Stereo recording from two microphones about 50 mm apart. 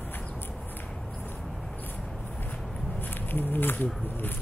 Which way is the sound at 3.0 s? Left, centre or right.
Left.